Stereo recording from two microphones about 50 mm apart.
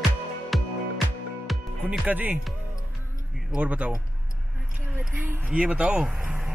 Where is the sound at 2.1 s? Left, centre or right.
Right.